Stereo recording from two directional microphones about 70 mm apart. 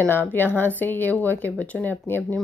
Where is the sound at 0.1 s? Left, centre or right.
Left.